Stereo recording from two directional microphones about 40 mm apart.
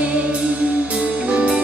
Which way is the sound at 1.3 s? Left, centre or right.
Right.